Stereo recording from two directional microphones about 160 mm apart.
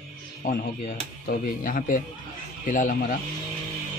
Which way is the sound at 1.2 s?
65° left (ahead or behind).